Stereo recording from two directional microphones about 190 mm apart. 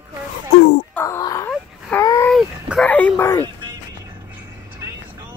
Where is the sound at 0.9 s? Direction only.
10° left (ahead or behind).